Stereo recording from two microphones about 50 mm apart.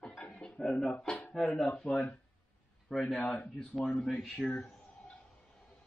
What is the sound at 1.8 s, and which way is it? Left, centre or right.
A man's voice, centre.